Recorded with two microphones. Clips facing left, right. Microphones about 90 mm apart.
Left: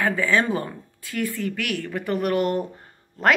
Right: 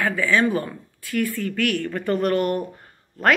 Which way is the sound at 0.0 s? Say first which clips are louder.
Right 1 dB; 25° left (ahead or behind).